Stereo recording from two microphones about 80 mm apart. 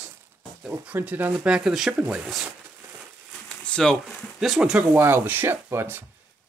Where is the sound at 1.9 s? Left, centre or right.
Right.